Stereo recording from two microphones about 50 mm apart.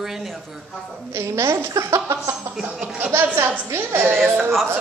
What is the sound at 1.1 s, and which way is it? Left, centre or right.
A woman's voice, right.